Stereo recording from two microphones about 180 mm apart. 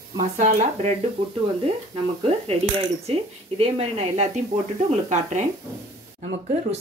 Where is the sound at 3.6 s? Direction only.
35° right (ahead or behind).